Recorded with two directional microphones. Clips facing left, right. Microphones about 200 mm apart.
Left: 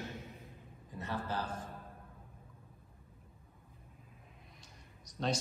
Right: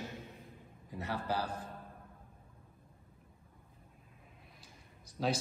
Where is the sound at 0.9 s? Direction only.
10° right (ahead or behind).